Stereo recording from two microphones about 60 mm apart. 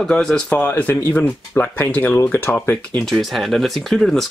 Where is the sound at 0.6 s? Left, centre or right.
Left.